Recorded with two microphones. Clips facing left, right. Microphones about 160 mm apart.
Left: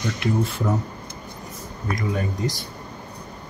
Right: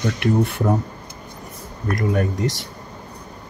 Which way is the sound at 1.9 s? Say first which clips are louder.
Right 5 dB; 60° right (ahead or behind).